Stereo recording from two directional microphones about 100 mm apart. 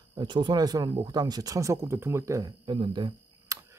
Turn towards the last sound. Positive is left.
turn(degrees=-30)  # may be behind; listen again after turning